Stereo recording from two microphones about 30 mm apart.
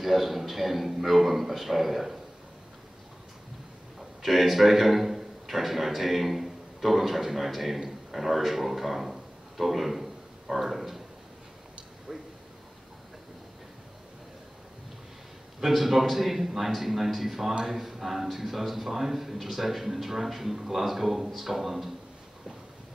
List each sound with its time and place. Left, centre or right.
0.0 s a man's voice: centre
4.2 s a man's voice: centre
12.1 s speech: centre
15.6 s a man's voice: centre